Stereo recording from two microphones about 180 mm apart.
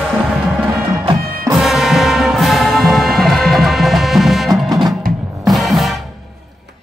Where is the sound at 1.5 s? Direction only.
Centre (ahead or behind).